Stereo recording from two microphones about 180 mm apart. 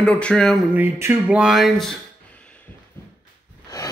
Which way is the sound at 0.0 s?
5° left (ahead or behind).